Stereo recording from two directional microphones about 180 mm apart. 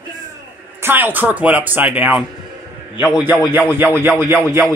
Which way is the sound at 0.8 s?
10° right (ahead or behind).